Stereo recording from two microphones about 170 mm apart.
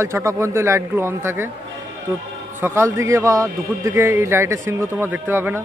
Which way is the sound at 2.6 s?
15° right (ahead or behind).